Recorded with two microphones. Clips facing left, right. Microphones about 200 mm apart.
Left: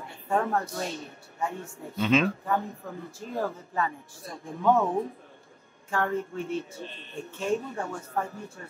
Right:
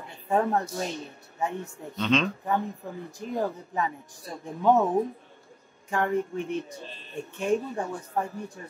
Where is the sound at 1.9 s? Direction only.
5° left (ahead or behind).